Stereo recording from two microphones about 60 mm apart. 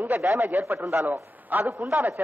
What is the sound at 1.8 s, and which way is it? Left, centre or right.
Speech, right.